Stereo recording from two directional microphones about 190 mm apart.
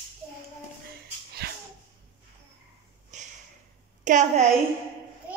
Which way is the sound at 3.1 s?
40° right (ahead or behind).